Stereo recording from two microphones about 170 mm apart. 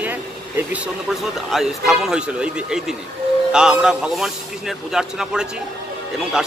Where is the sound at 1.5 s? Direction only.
Centre (ahead or behind).